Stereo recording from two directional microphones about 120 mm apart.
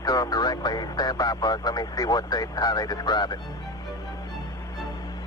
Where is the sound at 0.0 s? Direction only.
30° left (ahead or behind).